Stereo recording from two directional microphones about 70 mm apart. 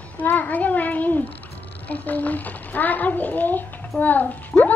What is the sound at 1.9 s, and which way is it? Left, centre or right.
A child's voice, left.